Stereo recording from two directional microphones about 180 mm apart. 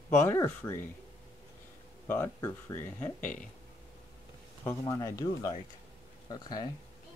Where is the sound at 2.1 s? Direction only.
10° left (ahead or behind).